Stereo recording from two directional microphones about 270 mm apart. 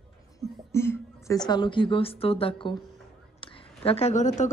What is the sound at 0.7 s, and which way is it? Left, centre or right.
A woman's voice, centre.